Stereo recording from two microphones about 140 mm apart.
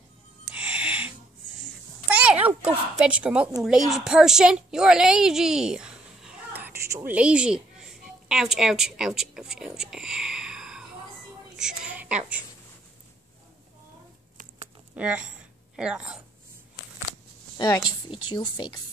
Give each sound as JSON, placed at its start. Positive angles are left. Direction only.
{"t": 0.5, "sound": "music", "side_deg": -10}
{"t": 2.0, "sound": "a sound", "side_deg": -10}
{"t": 2.4, "sound": "a woman's voice", "side_deg": -10}
{"t": 11.5, "sound": "a sound", "side_deg": -5}
{"t": 15.0, "sound": "a woman's voice", "side_deg": -10}
{"t": 17.6, "sound": "speech", "side_deg": 25}